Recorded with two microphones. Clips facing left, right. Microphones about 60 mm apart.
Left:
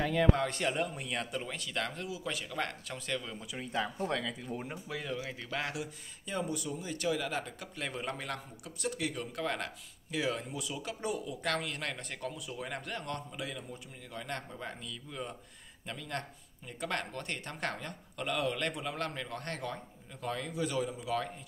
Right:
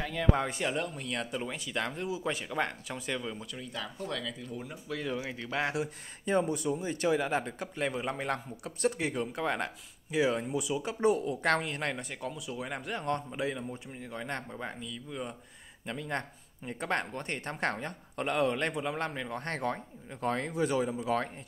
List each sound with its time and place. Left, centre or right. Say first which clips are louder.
0.3 s speech: right 1 dB; centre
0.6 s speech: even; centre
2.0 s speech: right 5 dB; right; by 3.4 s centre
3.5 s speech: left 4 dB; left
4.5 s speech: left 1 dB; left
5.7 s speech: right 6 dB; right; by 8.2 s centre
8.2 s speech: right 6 dB; right
11.6 s speech: right 4 dB; right
12.0 s speech: right 2 dB; centre
12.6 s speech: right 2 dB; centre
13.0 s speech: right 7 dB; right
14.8 s speech: right 3 dB; centre
15.9 s speech: right 4 dB; right
19.5 s speech: right 6 dB; right